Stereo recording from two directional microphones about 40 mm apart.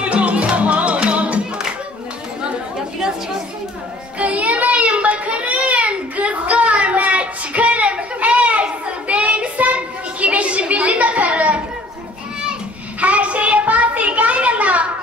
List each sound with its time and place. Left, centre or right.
0.0 s music: right
4.2 s child singing: right
13.0 s a sound: right